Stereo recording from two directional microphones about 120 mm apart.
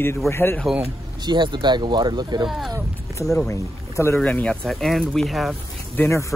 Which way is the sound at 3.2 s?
Centre (ahead or behind).